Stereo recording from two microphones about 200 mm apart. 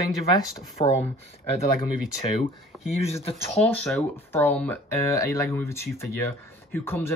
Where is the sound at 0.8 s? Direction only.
30° left (ahead or behind).